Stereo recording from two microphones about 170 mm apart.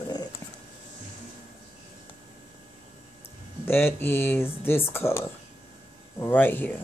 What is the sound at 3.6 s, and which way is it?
Speech, 15° left (ahead or behind).